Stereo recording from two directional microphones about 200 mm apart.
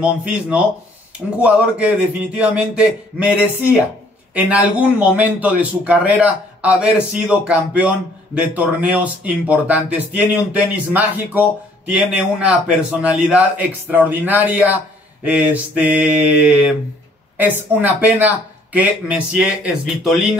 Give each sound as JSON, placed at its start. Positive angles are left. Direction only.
{"t": 0.0, "sound": "a man's voice", "side_deg": -5}